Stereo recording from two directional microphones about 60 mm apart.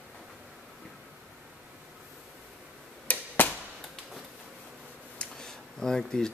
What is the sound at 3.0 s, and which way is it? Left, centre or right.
Arrow, left.